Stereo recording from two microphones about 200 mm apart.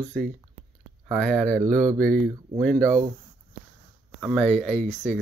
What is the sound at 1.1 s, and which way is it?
Speech, 5° left (ahead or behind).